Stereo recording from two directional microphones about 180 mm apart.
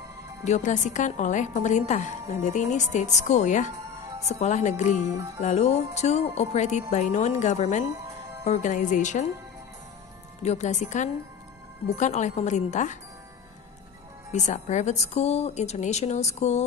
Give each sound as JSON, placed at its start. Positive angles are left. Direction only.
{"t": 0.5, "sound": "a woman's voice", "side_deg": 40}
{"t": 10.4, "sound": "speech", "side_deg": 40}
{"t": 14.3, "sound": "speech", "side_deg": 40}